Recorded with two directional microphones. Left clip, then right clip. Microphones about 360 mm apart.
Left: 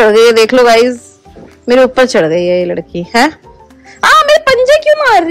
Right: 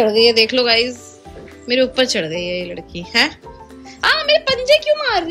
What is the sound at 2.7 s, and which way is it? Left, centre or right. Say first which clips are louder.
Speech: left 6 dB; left.